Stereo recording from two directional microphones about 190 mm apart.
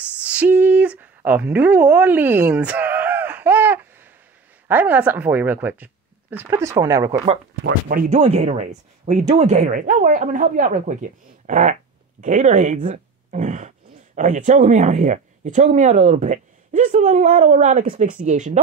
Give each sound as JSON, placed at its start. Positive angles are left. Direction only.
{"t": 0.2, "sound": "a sound", "side_deg": -5}
{"t": 4.6, "sound": "a woman's voice", "side_deg": -10}
{"t": 7.9, "sound": "speech", "side_deg": -40}